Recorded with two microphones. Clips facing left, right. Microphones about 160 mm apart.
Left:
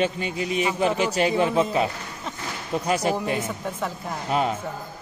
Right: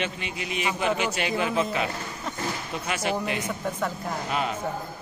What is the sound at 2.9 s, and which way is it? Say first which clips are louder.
Speech: left 5 dB; 35° left (ahead or behind).